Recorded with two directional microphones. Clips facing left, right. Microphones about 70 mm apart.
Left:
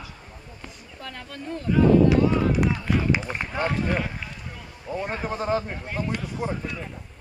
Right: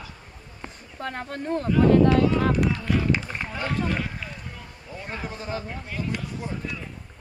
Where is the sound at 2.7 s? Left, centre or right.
Centre.